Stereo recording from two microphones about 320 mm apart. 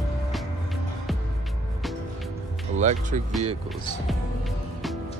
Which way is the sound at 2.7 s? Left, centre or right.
Right.